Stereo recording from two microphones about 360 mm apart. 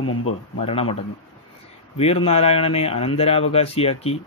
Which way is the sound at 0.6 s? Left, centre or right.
Centre.